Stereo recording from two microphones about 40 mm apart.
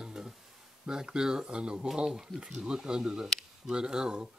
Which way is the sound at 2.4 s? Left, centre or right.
Centre.